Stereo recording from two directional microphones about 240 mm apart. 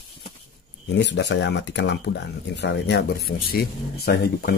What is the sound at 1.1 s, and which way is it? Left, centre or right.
Speech, left.